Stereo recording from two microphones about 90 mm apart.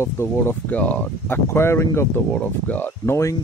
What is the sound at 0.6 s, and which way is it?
Speech, 15° left (ahead or behind).